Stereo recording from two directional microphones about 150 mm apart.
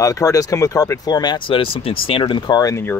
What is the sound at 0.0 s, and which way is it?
Speech, 20° left (ahead or behind).